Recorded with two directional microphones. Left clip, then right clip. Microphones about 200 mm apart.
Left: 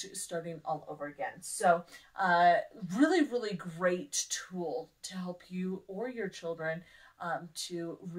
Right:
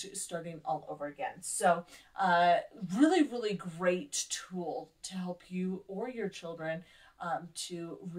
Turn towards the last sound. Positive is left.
turn(degrees=25)  # may be behind; listen again after turning